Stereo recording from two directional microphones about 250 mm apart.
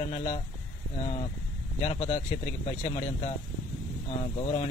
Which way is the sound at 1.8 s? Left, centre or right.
Left.